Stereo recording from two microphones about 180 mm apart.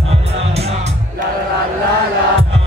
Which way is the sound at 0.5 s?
35° right (ahead or behind).